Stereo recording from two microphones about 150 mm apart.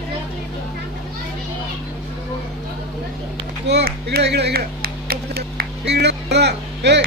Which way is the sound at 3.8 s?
90° right.